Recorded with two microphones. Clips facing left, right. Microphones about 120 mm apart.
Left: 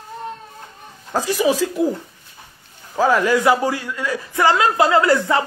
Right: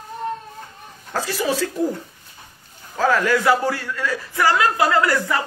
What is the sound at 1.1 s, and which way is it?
Speech, 15° left (ahead or behind).